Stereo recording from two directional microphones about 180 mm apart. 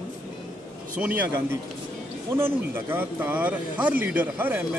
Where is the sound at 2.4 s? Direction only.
10° right (ahead or behind).